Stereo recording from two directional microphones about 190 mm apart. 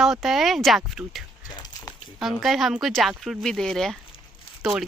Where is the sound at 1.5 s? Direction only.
20° left (ahead or behind).